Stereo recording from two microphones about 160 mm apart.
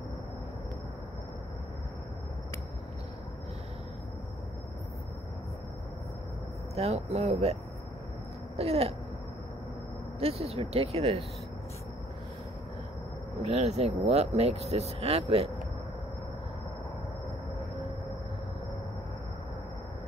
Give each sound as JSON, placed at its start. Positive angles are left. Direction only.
{"t": 6.7, "sound": "speech", "side_deg": -40}
{"t": 8.5, "sound": "speech", "side_deg": -40}
{"t": 10.2, "sound": "speech", "side_deg": -40}
{"t": 13.5, "sound": "speech", "side_deg": -45}